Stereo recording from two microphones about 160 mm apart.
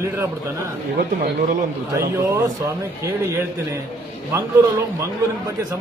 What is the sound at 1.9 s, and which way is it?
Speech, 20° right (ahead or behind).